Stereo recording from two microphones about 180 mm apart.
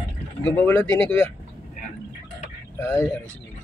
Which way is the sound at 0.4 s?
10° left (ahead or behind).